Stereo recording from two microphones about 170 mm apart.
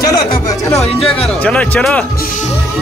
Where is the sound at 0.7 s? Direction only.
Centre (ahead or behind).